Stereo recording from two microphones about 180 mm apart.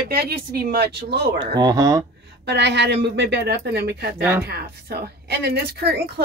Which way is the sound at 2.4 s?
70° right (ahead or behind).